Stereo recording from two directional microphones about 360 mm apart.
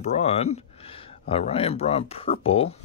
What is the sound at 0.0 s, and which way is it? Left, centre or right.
Speech, centre.